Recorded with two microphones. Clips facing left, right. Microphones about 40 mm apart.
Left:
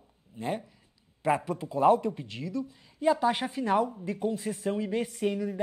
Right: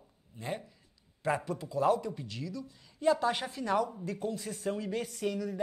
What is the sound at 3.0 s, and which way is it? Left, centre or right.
Speech, centre.